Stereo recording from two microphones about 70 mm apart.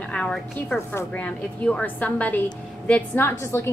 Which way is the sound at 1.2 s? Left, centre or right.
Centre.